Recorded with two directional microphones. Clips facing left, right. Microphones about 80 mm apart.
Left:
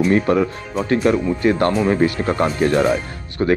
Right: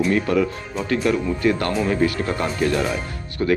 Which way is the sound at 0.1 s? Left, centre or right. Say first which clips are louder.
Left 3 dB; left.